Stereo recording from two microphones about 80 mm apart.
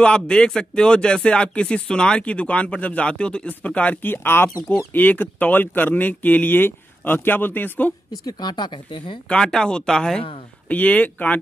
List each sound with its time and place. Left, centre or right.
0.0 s speech: centre
8.3 s speech: left
9.3 s speech: centre
10.7 s speech: centre